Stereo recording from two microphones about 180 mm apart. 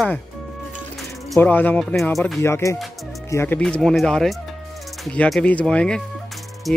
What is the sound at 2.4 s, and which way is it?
Speech, 15° left (ahead or behind).